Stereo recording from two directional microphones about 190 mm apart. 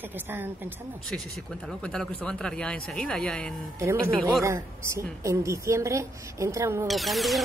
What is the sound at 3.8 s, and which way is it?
A woman's voice, 15° right (ahead or behind).